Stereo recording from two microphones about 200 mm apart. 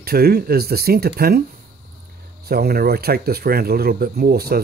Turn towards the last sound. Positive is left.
turn(degrees=-50)  # may be behind; listen again after turning